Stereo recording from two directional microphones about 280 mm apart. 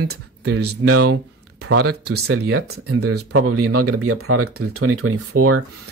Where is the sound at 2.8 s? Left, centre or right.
Right.